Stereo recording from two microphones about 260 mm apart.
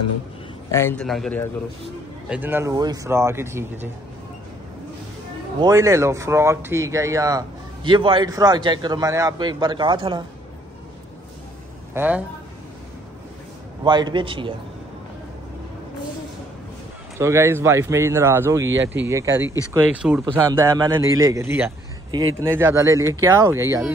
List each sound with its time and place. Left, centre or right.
0.7 s a man's voice: centre
5.6 s speech: centre
11.9 s a man's voice: centre
13.8 s speech: centre
17.2 s speech: centre